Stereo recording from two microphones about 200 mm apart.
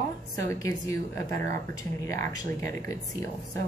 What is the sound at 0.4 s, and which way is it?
Speech, 15° left (ahead or behind).